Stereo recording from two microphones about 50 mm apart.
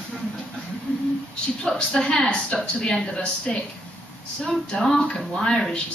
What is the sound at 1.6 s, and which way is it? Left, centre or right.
Speech, centre.